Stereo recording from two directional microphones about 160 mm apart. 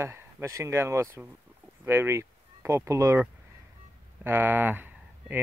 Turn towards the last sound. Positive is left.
turn(degrees=-10)  # may be behind; listen again after turning